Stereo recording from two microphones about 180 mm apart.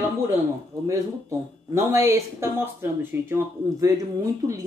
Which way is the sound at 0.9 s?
15° right (ahead or behind).